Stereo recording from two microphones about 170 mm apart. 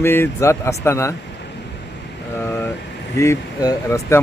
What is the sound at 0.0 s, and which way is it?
Speech, 15° left (ahead or behind).